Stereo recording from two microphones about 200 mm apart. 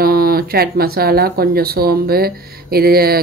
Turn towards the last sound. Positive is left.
turn(degrees=-50)  # may be behind; listen again after turning